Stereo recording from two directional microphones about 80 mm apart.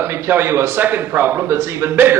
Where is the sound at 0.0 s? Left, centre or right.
Right.